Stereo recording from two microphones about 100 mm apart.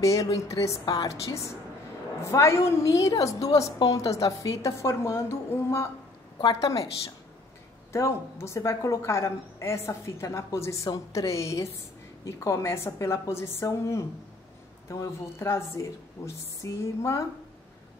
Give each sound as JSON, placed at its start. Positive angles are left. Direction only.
{"t": 0.0, "sound": "a woman's voice", "side_deg": 35}
{"t": 7.9, "sound": "a woman's voice", "side_deg": 30}